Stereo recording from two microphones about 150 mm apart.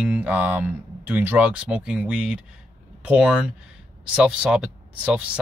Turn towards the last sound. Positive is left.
turn(degrees=-10)  # may be behind; listen again after turning